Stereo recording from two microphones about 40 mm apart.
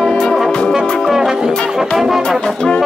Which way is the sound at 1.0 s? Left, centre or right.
Centre.